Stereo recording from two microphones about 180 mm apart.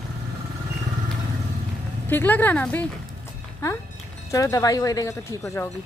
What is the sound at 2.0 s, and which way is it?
Speech, 10° left (ahead or behind).